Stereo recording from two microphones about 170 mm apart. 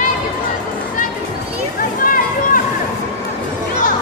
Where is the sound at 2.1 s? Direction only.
55° left (ahead or behind).